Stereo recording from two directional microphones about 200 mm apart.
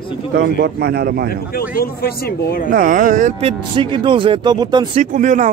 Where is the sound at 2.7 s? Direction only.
40° right (ahead or behind).